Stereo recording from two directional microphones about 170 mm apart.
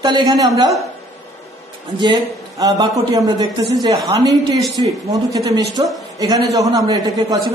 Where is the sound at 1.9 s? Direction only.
25° right (ahead or behind).